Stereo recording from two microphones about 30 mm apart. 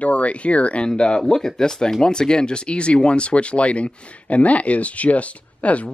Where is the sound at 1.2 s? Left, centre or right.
Centre.